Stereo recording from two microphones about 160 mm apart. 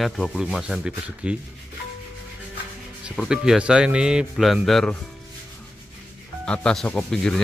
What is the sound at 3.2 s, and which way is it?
Rub, 5° right (ahead or behind).